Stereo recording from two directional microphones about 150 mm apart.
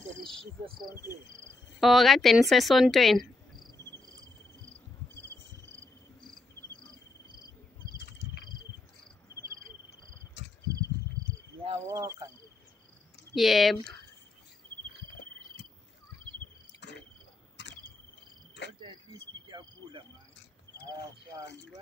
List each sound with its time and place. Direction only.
0.3 s speech: centre (ahead or behind)
1.3 s cricket: 20° right (ahead or behind)
1.8 s speech: centre (ahead or behind)
5.1 s cricket: 15° left (ahead or behind)
10.7 s a sound: 20° right (ahead or behind)
11.7 s cricket: 20° right (ahead or behind)
13.3 s speech: centre (ahead or behind)
18.8 s cricket: 30° right (ahead or behind)